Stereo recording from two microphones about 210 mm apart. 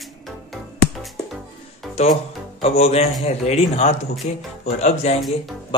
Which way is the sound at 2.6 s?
30° left (ahead or behind).